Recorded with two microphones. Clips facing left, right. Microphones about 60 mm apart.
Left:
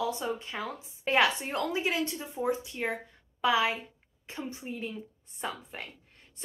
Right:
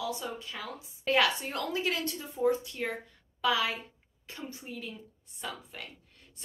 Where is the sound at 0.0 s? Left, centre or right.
Left.